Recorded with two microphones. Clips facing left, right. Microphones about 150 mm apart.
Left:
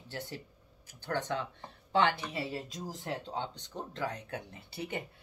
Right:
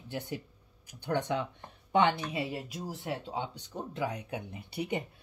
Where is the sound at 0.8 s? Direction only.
15° right (ahead or behind).